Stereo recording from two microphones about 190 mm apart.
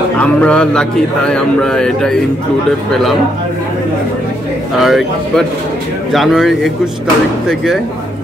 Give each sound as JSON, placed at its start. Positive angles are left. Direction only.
{"t": 0.2, "sound": "speech", "side_deg": 5}
{"t": 4.8, "sound": "speech", "side_deg": 0}